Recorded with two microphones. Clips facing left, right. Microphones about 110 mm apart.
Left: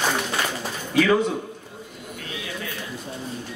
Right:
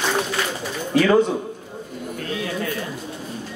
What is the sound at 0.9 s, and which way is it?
Speech, 35° right (ahead or behind).